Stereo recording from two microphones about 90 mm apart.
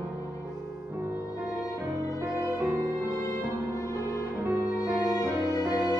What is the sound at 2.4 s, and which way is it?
Music, 35° right (ahead or behind).